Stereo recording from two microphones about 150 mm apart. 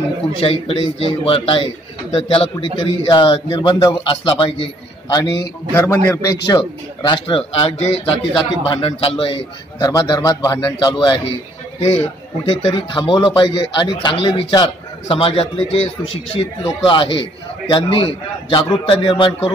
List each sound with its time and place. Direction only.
0.4 s a man's voice: 40° left (ahead or behind)
12.4 s a man's voice: 35° left (ahead or behind)